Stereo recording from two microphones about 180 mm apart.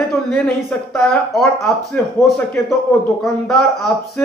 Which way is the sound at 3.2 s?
Centre (ahead or behind).